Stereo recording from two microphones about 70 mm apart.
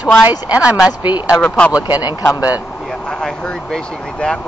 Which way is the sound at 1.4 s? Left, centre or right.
Centre.